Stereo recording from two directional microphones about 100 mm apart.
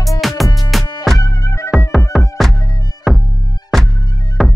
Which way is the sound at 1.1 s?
35° left (ahead or behind).